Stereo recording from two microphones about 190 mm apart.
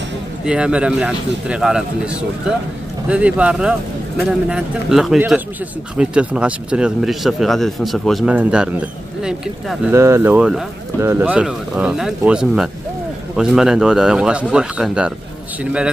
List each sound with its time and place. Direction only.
0.5 s speech: 5° right (ahead or behind)
3.1 s speech: 5° right (ahead or behind)